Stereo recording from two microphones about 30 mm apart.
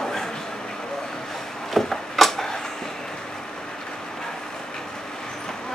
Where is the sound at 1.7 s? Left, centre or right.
Centre.